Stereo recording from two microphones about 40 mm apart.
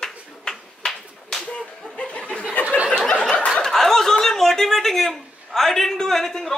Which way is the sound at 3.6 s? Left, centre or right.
Centre.